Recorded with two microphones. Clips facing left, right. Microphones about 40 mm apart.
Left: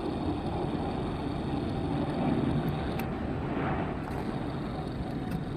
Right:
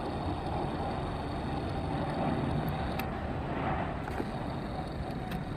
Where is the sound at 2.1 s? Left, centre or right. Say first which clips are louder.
Left 3 dB; centre.